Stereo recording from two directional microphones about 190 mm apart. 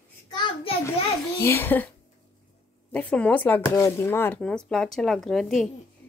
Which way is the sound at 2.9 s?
5° left (ahead or behind).